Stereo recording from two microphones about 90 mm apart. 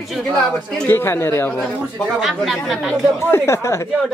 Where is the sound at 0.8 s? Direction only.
25° left (ahead or behind).